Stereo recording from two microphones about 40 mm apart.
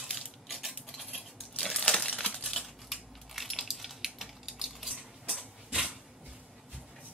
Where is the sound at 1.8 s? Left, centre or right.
Centre.